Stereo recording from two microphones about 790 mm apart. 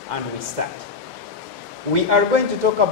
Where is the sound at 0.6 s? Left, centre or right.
Right.